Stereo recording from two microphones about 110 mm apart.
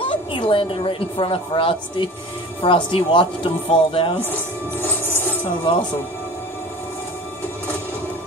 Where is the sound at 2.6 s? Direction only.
50° left (ahead or behind).